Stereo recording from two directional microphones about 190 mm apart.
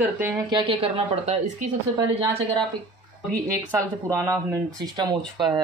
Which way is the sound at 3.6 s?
15° right (ahead or behind).